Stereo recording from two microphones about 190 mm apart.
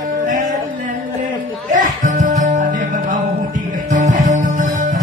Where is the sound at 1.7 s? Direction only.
40° right (ahead or behind).